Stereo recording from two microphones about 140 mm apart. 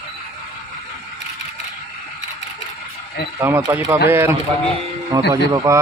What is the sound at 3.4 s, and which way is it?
Speech, 20° right (ahead or behind).